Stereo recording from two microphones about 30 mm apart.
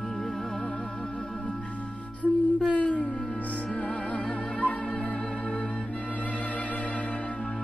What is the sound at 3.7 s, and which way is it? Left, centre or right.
Music, left.